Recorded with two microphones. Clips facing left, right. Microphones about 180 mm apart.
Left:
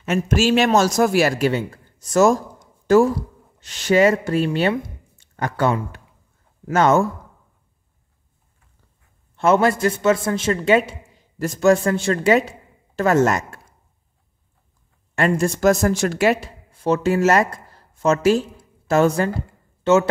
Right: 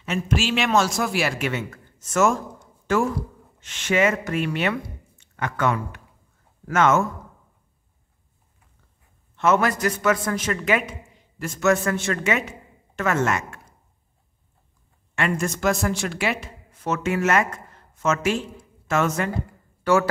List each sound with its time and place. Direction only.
0.0 s speech: 45° left (ahead or behind)
9.4 s a man's voice: 30° left (ahead or behind)
15.1 s a woman's voice: 35° left (ahead or behind)